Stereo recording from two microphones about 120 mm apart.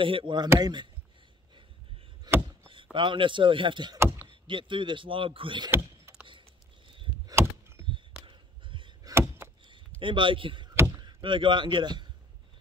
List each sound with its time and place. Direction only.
0.0 s speech: 45° right (ahead or behind)
2.3 s a sound: 35° right (ahead or behind)
2.7 s speech: 45° right (ahead or behind)
4.0 s vehicle: 20° right (ahead or behind)
4.3 s speech: 45° right (ahead or behind)
7.3 s vehicle: 20° right (ahead or behind)
7.9 s a sound: 45° right (ahead or behind)
9.0 s chop: 25° right (ahead or behind)
9.7 s a sound: 45° right (ahead or behind)
11.0 s a man's voice: 40° right (ahead or behind)